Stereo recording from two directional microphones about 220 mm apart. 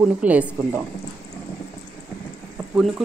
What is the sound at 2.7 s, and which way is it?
Speech, centre (ahead or behind).